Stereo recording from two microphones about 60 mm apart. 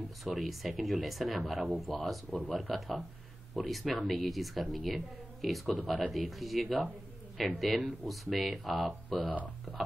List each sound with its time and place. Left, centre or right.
0.2 s speech: centre